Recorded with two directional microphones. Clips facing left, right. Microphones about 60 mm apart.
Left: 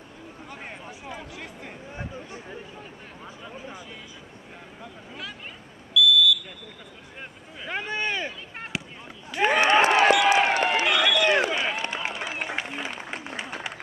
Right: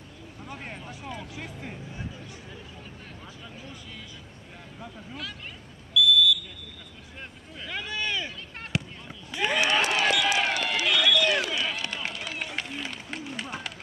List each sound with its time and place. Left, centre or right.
0.6 s a sound: centre
1.3 s speech: centre
1.9 s speech: left
3.4 s speech: left
5.9 s a sound: centre
7.6 s speech: left
8.7 s a sound: centre
9.4 s run: left
11.9 s run: left
12.6 s applause: left
13.4 s run: left